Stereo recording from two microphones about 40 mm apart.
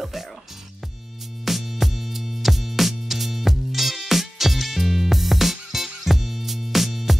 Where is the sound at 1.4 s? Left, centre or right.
Centre.